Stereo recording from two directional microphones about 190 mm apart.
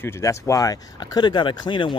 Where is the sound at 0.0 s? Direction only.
15° left (ahead or behind).